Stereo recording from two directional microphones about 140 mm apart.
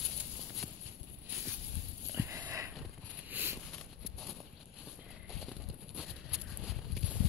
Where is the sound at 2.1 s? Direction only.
20° right (ahead or behind).